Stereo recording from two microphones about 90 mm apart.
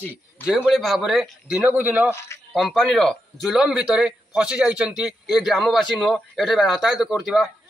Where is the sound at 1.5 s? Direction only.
15° right (ahead or behind).